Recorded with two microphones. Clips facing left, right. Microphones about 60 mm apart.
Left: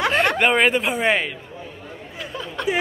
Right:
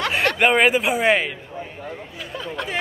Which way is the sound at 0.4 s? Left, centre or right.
Centre.